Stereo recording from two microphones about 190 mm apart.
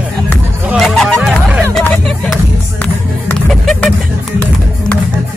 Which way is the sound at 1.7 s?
10° left (ahead or behind).